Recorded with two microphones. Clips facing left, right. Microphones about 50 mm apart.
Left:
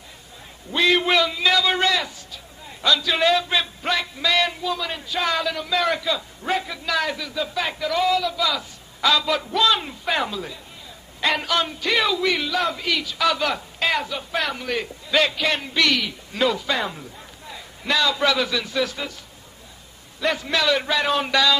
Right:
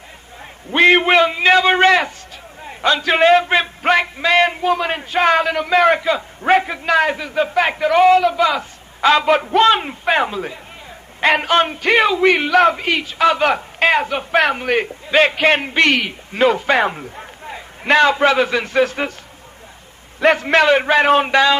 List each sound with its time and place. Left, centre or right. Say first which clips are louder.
0.7 s a man's voice: right 7 dB; right
20.2 s a man's voice: right 9 dB; right